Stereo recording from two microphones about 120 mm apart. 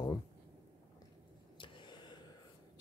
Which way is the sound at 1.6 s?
40° left (ahead or behind).